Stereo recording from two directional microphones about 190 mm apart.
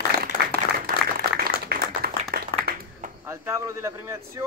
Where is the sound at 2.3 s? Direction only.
50° right (ahead or behind).